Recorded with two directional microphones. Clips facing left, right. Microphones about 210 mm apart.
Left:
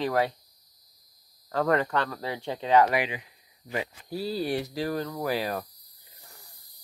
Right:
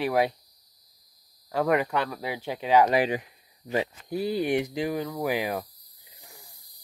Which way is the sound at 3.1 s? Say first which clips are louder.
Right 8 dB; 45° right (ahead or behind).